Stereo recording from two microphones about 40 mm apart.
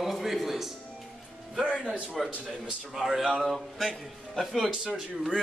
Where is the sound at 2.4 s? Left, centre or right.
Centre.